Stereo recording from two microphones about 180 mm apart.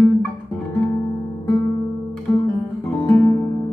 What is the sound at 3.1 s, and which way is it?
Music, 15° left (ahead or behind).